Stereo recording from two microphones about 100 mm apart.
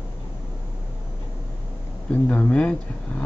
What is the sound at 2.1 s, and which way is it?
Speech, 15° left (ahead or behind).